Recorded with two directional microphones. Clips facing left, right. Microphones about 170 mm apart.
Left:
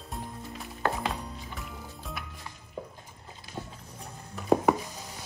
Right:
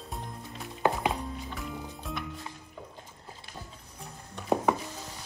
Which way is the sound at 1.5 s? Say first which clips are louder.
Right 4 dB; centre (ahead or behind).